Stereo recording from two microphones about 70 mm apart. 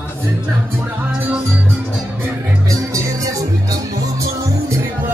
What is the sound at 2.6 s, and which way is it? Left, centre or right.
Music, right.